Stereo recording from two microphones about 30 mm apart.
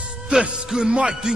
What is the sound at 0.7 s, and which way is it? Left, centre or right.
Music, right.